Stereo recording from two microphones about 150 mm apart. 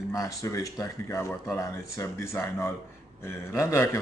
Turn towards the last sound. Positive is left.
turn(degrees=20)  # may be behind; listen again after turning